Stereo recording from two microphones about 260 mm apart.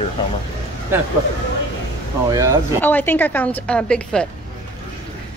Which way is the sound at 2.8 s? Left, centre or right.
Centre.